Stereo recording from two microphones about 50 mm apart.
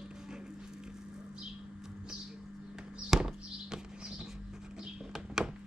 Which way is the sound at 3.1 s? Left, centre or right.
Centre.